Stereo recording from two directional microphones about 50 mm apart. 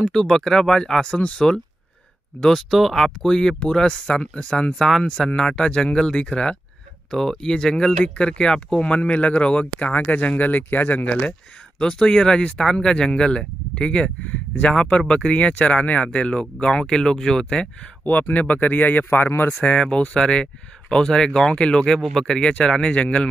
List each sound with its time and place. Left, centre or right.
0.1 s speech: centre
2.4 s speech: centre
4.7 s speech: centre
5.3 s speech: centre; by 11.1 s left
11.8 s speech: centre
14.2 s speech: left
14.7 s speech: centre
18.3 s speech: left
19.5 s speech: left